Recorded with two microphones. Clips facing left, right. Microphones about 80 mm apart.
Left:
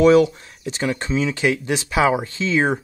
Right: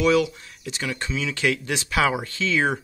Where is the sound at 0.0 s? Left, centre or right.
Left.